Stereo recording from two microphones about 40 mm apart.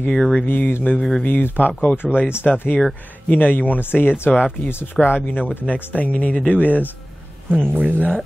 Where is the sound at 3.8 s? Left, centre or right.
Left.